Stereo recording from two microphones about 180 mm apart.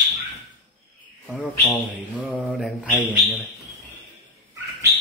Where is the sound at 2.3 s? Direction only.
5° right (ahead or behind).